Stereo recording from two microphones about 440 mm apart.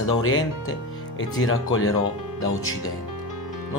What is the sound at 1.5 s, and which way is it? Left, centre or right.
Speech, left.